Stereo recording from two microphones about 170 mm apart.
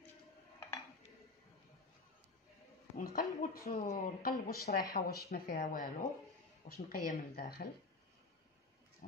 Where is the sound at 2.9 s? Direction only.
50° left (ahead or behind).